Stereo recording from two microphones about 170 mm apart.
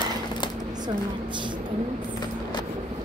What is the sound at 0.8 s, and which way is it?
Speech, 25° right (ahead or behind).